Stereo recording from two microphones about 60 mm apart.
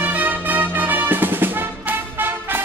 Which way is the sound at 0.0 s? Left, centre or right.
Right.